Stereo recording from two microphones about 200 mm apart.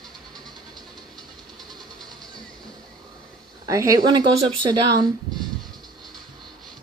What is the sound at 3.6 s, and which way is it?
Speech, 15° right (ahead or behind).